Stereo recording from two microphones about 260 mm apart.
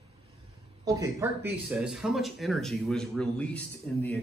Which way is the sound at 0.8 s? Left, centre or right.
Centre.